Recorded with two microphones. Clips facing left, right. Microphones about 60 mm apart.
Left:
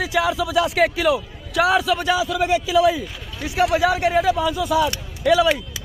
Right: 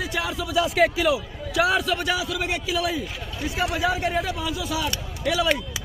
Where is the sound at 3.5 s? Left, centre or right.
Left.